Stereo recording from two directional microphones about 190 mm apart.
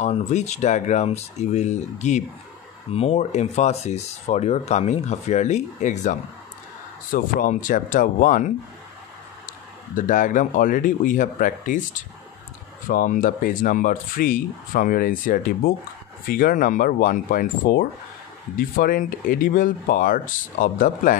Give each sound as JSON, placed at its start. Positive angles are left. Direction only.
{"t": 0.0, "sound": "speech", "side_deg": 35}
{"t": 9.5, "sound": "speech", "side_deg": 45}
{"t": 12.8, "sound": "speech", "side_deg": 45}